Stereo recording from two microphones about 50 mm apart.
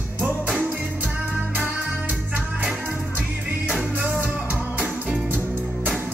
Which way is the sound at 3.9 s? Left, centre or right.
Right.